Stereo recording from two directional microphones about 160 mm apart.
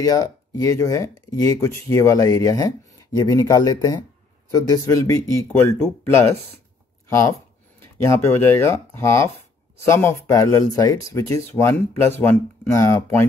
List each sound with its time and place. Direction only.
0.0 s speech: 20° left (ahead or behind)